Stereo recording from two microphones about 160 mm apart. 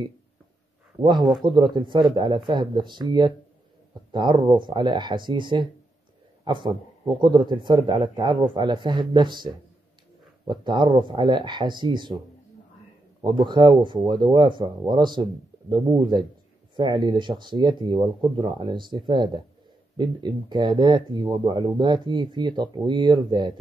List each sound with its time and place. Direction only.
1.0 s speech: 30° right (ahead or behind)
13.2 s speech: 30° right (ahead or behind)